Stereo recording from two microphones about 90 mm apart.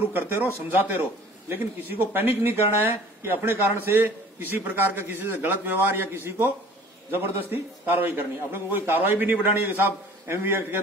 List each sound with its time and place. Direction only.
0.1 s speech: 20° right (ahead or behind)